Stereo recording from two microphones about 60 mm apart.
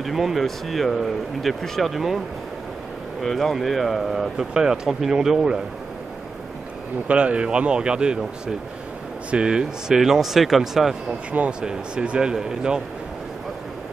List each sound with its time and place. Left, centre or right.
0.0 s speech: centre
3.2 s speech: centre
7.1 s speech: centre
9.3 s speech: centre